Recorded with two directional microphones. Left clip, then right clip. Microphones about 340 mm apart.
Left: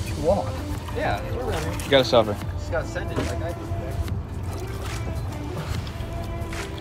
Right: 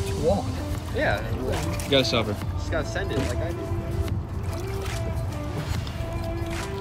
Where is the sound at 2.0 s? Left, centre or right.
Centre.